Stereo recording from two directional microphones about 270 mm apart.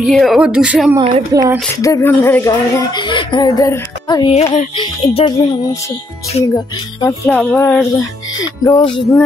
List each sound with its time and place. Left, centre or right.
0.0 s speech: centre
0.9 s speech: centre
1.8 s speech: centre
6.5 s speech: centre